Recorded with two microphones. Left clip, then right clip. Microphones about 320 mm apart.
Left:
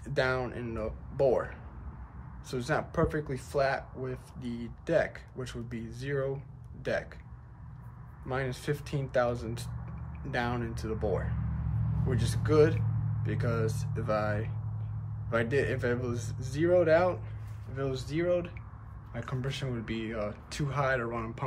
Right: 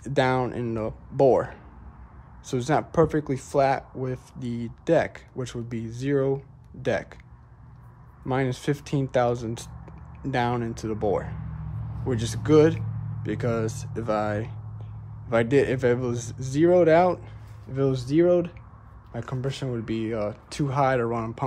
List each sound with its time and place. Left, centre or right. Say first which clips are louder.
0.0 s speech: right 7 dB; centre
8.3 s speech: right 7 dB; centre